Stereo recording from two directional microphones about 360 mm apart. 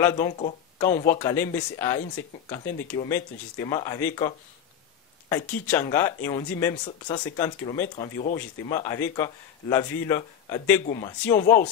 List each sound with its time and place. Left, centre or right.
0.0 s speech: centre